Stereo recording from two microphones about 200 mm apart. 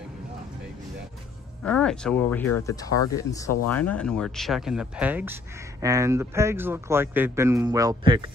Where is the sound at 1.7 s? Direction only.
5° left (ahead or behind).